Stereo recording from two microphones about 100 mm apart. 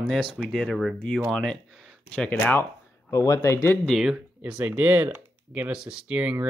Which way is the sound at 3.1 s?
30° left (ahead or behind).